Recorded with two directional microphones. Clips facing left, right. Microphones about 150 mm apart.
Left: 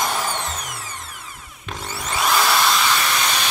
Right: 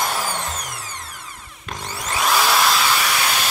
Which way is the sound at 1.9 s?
5° right (ahead or behind).